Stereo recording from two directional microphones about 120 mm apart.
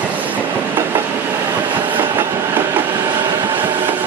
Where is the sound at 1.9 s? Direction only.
15° right (ahead or behind).